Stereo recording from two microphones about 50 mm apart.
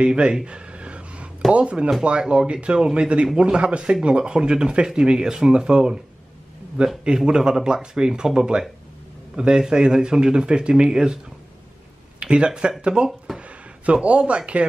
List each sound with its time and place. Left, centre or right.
0.0 s a sound: centre
1.5 s speech: right
7.1 s speech: centre
12.2 s speech: centre